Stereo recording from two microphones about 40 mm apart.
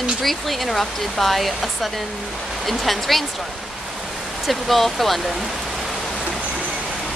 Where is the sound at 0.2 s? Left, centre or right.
Centre.